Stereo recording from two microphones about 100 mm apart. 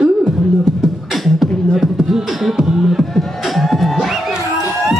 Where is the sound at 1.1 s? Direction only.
Centre (ahead or behind).